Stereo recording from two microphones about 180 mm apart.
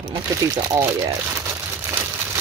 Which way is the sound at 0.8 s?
15° right (ahead or behind).